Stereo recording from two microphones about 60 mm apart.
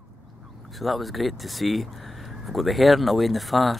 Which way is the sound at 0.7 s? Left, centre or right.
Centre.